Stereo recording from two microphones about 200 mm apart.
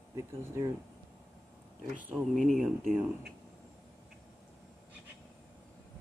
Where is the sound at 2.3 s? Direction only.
Centre (ahead or behind).